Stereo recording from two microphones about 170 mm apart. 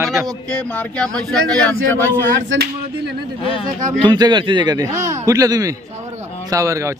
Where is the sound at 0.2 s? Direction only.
5° left (ahead or behind).